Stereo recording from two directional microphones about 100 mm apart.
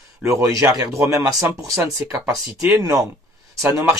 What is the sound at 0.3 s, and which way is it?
Speech, 35° right (ahead or behind).